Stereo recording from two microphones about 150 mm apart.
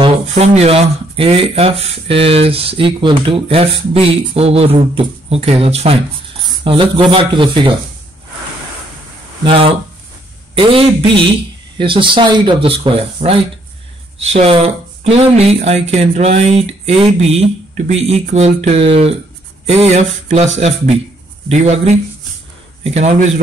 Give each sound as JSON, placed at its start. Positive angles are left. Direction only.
{"t": 0.3, "sound": "speech", "side_deg": -45}
{"t": 9.4, "sound": "speech", "side_deg": -35}